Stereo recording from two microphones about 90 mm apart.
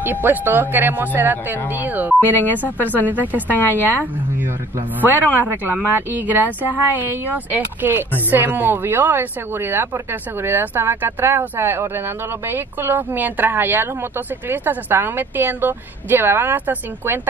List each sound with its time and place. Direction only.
0.0 s speech: 20° right (ahead or behind)
2.3 s speech: 20° left (ahead or behind)
5.0 s speech: 20° right (ahead or behind)